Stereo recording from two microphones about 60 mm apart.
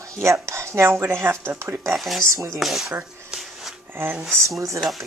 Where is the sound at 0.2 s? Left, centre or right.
Right.